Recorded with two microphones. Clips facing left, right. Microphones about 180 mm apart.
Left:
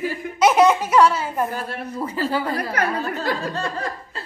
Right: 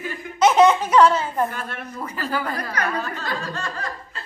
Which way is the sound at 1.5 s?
30° left (ahead or behind).